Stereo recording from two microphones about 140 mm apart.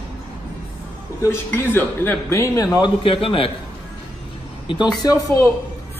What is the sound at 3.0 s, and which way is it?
Speech, 40° left (ahead or behind).